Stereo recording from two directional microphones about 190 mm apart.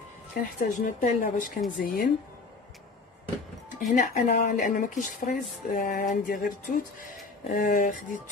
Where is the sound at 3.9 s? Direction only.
45° left (ahead or behind).